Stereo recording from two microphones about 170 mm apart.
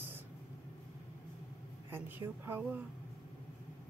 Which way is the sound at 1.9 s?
10° right (ahead or behind).